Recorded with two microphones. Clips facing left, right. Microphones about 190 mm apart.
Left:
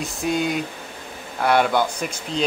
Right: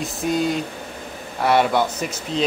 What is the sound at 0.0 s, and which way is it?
Speech, centre (ahead or behind).